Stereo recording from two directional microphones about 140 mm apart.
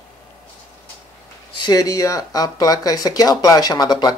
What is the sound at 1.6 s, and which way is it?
Speech, 25° left (ahead or behind).